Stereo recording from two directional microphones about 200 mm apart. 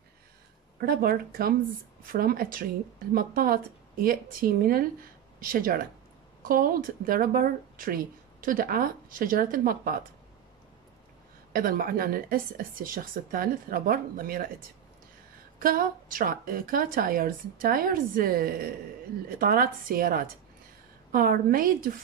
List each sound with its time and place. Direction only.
0.7 s speech: 45° right (ahead or behind)
11.5 s speech: 45° right (ahead or behind)
15.6 s speech: 45° right (ahead or behind)